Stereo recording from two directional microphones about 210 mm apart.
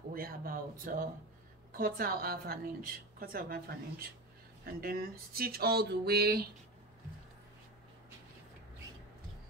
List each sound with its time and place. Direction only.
0.1 s a woman's voice: 45° right (ahead or behind)